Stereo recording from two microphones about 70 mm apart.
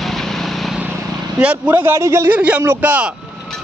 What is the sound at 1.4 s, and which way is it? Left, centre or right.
Speech, centre.